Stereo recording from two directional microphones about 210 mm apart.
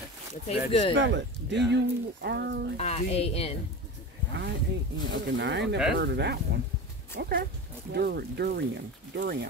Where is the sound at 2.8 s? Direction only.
30° left (ahead or behind).